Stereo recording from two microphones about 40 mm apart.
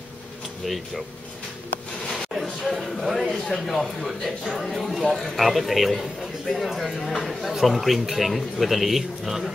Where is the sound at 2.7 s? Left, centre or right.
Centre.